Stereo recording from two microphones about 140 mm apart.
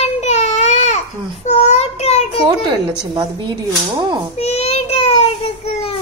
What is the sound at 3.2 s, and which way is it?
Speech, 35° right (ahead or behind).